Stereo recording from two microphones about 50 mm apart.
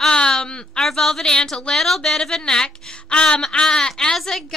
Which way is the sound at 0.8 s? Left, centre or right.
Centre.